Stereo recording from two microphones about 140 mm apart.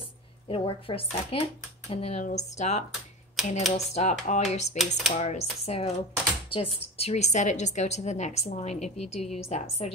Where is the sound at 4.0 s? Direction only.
55° left (ahead or behind).